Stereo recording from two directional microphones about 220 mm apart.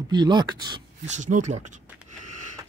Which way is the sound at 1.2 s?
35° right (ahead or behind).